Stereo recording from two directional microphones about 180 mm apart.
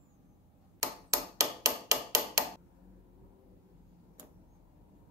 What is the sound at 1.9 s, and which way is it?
Hammer, 15° right (ahead or behind).